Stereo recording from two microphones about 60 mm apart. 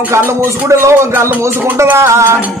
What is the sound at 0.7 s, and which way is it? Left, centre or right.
Speech, right.